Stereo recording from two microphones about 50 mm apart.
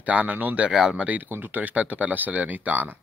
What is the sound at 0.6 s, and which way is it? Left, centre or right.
Speech, centre.